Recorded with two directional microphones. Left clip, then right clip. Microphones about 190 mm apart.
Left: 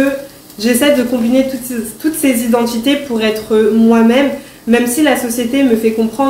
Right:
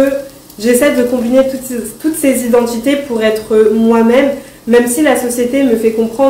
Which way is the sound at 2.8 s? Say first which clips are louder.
Right 2 dB; 15° left (ahead or behind).